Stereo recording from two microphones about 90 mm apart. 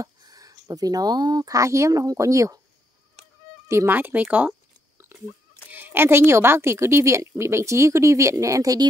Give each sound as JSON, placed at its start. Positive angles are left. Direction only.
{"t": 0.0, "sound": "speech", "side_deg": -40}
{"t": 3.6, "sound": "a sound", "side_deg": -30}
{"t": 5.7, "sound": "a woman's voice", "side_deg": -20}